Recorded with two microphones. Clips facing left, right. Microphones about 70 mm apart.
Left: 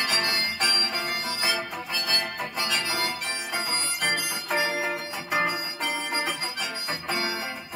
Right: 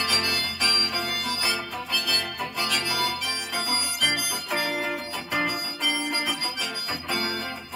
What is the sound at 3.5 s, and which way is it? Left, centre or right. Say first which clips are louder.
Harmonica: right 1 dB; centre.